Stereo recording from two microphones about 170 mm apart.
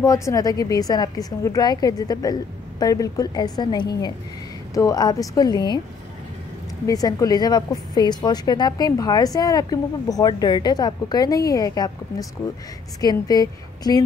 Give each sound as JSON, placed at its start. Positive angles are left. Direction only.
{"t": 0.0, "sound": "a woman's voice", "side_deg": 20}
{"t": 6.9, "sound": "a woman's voice", "side_deg": 20}